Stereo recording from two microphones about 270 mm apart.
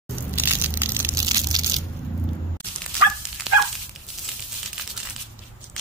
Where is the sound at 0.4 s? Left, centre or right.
Centre.